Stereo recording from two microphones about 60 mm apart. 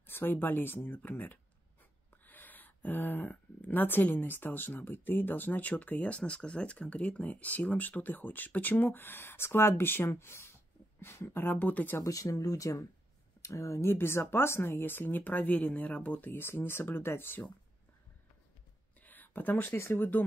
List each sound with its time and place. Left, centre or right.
0.0 s speech: left
11.5 s speech: left
12.0 s speech: left
13.4 s speech: left
13.8 s speech: left
19.0 s a sound: left
19.8 s speech: left